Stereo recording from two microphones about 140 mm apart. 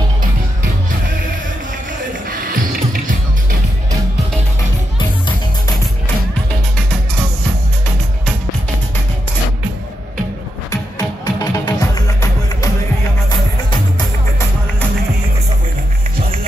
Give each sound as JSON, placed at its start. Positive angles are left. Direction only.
{"t": 2.2, "sound": "music", "side_deg": -90}
{"t": 10.7, "sound": "music", "side_deg": 25}